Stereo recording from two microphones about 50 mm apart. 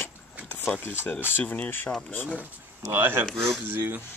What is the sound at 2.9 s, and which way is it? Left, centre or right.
Speech, right.